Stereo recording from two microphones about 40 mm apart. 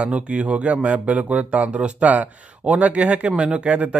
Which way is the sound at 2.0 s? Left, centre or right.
Right.